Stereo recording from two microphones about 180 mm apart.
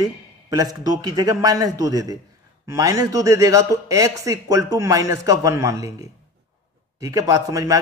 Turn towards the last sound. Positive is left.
turn(degrees=-20)  # may be behind; listen again after turning